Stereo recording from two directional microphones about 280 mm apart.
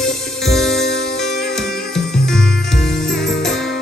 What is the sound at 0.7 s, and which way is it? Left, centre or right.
Music, left.